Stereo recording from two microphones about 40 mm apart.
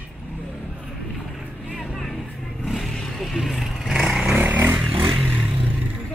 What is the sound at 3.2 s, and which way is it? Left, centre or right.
Vehicle, centre.